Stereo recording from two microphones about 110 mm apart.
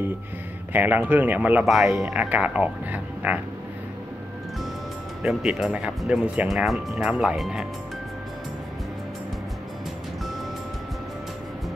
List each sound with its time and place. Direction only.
0.7 s speech: 15° right (ahead or behind)
1.6 s speech: centre (ahead or behind)
5.2 s speech: 5° right (ahead or behind)